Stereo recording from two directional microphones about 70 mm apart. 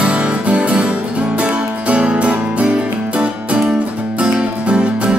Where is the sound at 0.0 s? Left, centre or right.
Centre.